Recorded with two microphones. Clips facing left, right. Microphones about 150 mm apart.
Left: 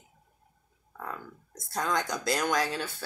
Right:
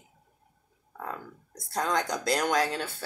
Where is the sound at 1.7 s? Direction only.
35° right (ahead or behind).